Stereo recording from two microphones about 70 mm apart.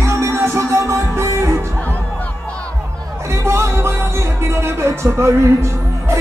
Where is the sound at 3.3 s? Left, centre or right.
Right.